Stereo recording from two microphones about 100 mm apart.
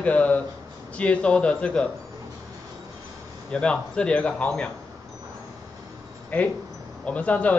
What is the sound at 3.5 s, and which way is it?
Speech, 10° left (ahead or behind).